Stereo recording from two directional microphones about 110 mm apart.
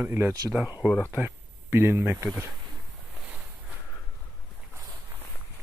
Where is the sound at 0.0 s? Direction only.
20° right (ahead or behind).